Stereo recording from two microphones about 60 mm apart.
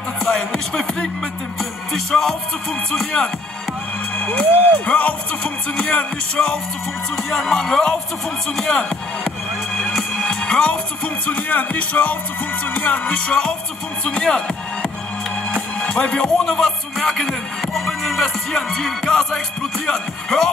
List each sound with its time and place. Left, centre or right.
0.2 s music: centre
4.2 s speech: left
7.2 s music: centre
11.2 s speech: left
13.3 s music: centre